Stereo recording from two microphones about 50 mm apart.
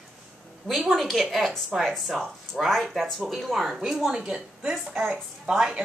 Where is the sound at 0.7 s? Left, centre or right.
Centre.